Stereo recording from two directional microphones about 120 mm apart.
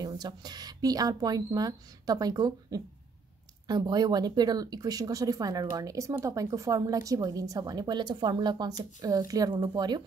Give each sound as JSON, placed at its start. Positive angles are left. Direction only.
{"t": 0.0, "sound": "speech", "side_deg": -35}